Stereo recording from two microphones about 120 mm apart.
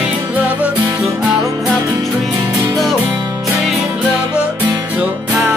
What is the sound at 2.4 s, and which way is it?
Music, 25° right (ahead or behind).